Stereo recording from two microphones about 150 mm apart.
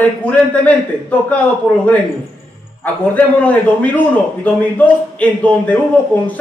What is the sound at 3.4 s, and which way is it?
Speech, 10° left (ahead or behind).